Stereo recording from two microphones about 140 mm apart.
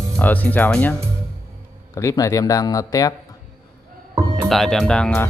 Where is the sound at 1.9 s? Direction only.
25° left (ahead or behind).